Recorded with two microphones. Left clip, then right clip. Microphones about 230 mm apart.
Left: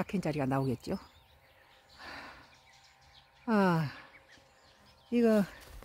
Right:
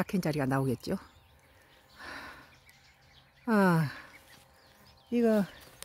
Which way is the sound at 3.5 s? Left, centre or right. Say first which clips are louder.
Right 2 dB; centre.